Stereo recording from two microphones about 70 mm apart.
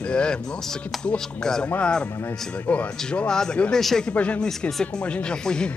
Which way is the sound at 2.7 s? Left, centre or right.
Left.